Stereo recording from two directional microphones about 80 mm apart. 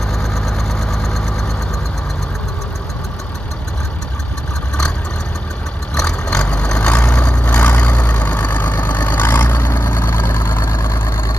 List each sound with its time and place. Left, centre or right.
0.2 s vehicle: centre
5.9 s vehicle: centre; by 11.3 s left